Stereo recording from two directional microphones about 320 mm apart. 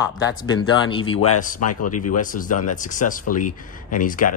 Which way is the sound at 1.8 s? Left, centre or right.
Left.